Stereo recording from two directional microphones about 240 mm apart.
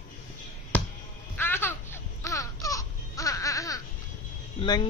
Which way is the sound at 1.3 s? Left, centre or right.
Centre.